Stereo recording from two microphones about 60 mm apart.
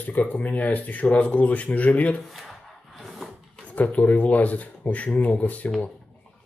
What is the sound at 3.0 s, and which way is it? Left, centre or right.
Drawer open or close, centre.